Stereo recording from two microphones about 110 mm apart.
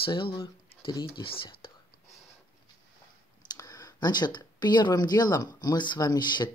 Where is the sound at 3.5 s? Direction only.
30° left (ahead or behind).